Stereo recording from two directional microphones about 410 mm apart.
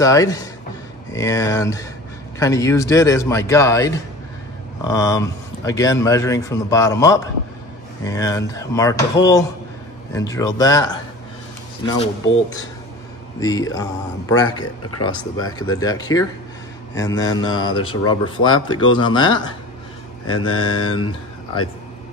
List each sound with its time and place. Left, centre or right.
0.0 s speech: centre
20.2 s mantra: left